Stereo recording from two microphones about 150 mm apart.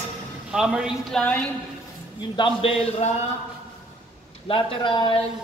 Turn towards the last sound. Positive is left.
turn(degrees=30)  # may be behind; listen again after turning